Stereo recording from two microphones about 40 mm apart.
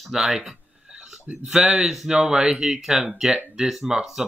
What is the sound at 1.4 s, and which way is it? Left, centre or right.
Speech, centre.